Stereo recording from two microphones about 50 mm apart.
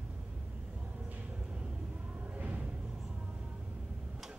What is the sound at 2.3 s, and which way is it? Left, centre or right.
Music, right.